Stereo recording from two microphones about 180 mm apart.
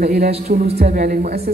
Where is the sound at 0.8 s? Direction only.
50° right (ahead or behind).